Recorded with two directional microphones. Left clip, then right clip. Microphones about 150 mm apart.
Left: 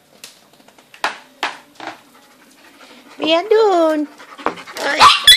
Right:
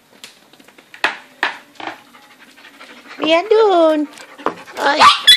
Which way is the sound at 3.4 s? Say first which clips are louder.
Right 1 dB; 15° right (ahead or behind).